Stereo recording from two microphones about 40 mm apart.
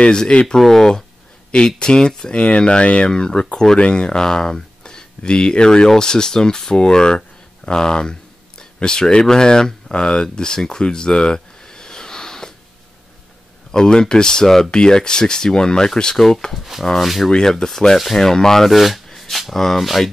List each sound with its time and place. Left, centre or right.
0.6 s speech: centre; by 3.1 s left
3.1 s speech: centre
13.7 s speech: centre
17.0 s speech: centre
17.3 s speech: centre
18.7 s speech: centre